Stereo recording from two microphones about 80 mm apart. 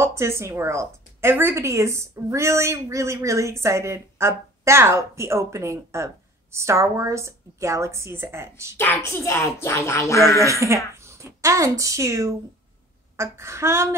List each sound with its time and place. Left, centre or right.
0.0 s a woman's voice: right
8.7 s a child's voice: left
10.4 s a woman's voice: right